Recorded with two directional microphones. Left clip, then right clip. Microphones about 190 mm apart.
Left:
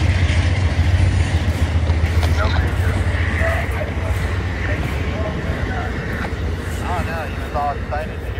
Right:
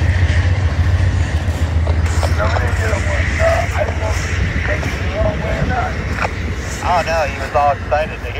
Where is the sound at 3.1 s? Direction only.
45° left (ahead or behind).